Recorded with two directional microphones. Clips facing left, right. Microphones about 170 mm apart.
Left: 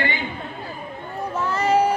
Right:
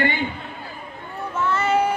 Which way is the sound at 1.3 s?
35° left (ahead or behind).